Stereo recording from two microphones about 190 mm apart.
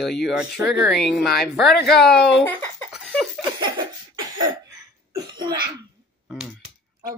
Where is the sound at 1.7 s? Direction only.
55° left (ahead or behind).